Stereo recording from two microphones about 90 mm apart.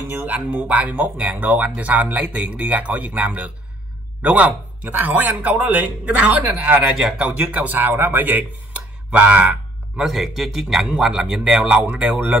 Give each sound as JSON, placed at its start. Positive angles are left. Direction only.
{"t": 0.1, "sound": "a man's voice", "side_deg": -15}